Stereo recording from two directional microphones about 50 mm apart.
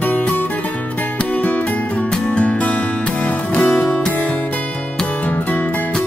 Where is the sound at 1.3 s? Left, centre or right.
Left.